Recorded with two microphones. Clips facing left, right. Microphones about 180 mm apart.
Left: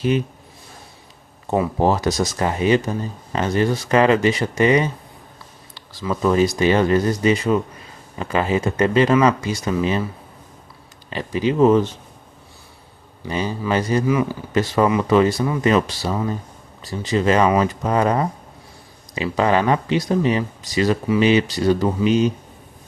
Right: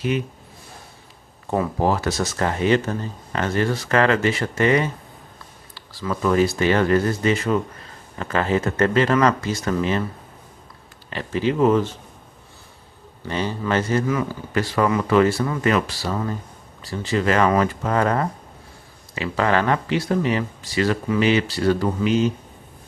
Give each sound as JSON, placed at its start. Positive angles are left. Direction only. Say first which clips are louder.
{"t": 1.5, "sound": "speech", "louder": "left 2 dB", "side_deg": 20}
{"t": 11.1, "sound": "speech", "louder": "left 1 dB", "side_deg": 15}
{"t": 13.3, "sound": "speech", "louder": "left 1 dB", "side_deg": 10}